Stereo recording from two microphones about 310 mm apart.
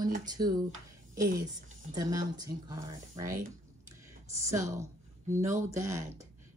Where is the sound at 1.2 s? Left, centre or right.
Right.